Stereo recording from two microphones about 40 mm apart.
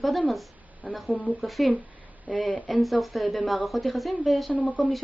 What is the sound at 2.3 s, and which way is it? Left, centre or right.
Speech, right.